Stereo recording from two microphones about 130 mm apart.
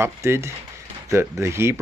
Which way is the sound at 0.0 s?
20° right (ahead or behind).